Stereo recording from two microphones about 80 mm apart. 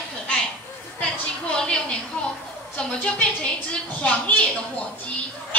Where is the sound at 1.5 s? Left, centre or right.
Centre.